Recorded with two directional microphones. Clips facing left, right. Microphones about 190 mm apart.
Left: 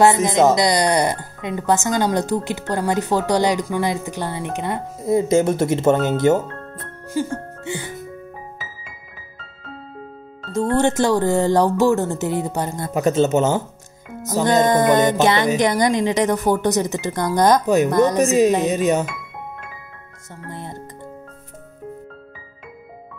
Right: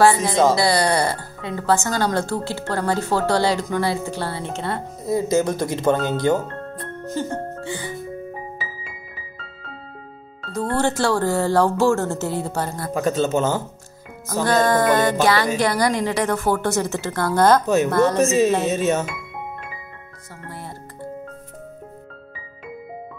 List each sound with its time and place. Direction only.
0.0 s speech: 20° left (ahead or behind)
10.5 s speech: 20° left (ahead or behind)
20.4 s music: 20° left (ahead or behind)